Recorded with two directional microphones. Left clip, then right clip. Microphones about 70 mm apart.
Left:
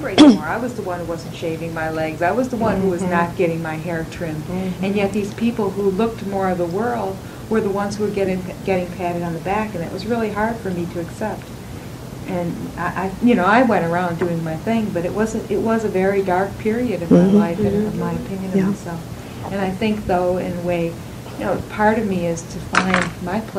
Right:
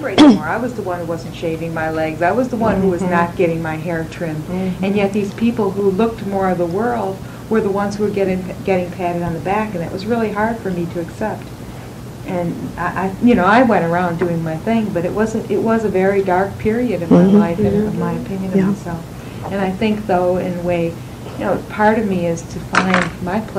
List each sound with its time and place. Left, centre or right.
0.0 s speech: left
12.3 s speech: left